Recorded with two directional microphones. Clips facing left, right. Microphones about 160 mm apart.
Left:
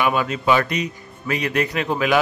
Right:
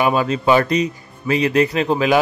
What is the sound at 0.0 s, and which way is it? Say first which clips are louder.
Speech: right 3 dB; 35° right (ahead or behind).